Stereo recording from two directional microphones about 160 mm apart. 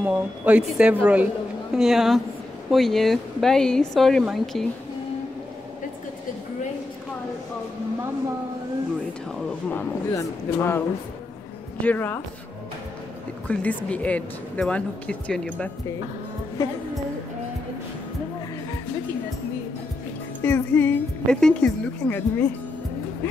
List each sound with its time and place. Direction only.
0.0 s speech: 10° right (ahead or behind)
9.4 s a sound: 10° left (ahead or behind)
10.1 s speech: 15° left (ahead or behind)
11.8 s speech: 10° left (ahead or behind)
13.5 s speech: 10° left (ahead or behind)
16.6 s speech: 20° left (ahead or behind)
20.4 s speech: 10° left (ahead or behind)